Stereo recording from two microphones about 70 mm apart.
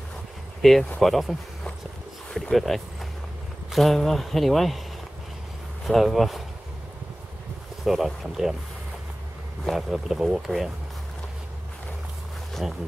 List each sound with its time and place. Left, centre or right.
0.6 s speech: centre
5.9 s speech: centre
7.8 s speech: centre
9.7 s speech: centre
12.6 s speech: centre